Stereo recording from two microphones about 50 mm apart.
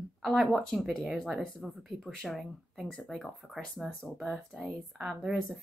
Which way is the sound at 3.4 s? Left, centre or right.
Centre.